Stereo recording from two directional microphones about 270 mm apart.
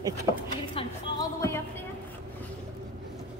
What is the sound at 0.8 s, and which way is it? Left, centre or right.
Music, centre.